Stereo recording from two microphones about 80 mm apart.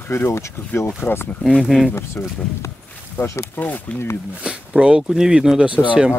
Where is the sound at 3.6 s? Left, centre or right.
Left.